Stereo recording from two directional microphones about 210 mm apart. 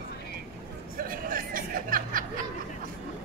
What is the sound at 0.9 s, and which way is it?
Music, 45° right (ahead or behind).